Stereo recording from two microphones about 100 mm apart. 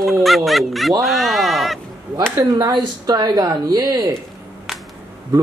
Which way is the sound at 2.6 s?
40° right (ahead or behind).